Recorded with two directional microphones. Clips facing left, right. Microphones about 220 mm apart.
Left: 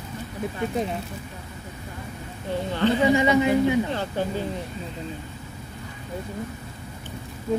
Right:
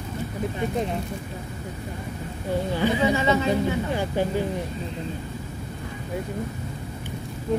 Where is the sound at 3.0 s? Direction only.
15° left (ahead or behind).